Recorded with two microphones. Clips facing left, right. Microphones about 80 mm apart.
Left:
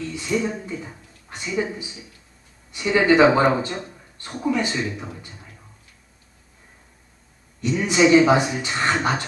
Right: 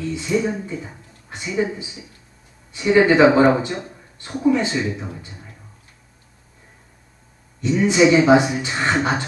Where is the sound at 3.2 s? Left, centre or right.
Centre.